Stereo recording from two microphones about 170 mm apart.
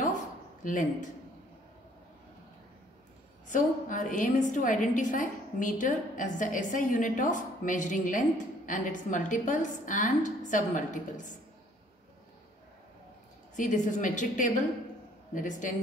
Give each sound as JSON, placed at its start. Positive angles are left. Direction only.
{"t": 3.4, "sound": "a woman's voice", "side_deg": 50}
{"t": 13.6, "sound": "a woman's voice", "side_deg": 45}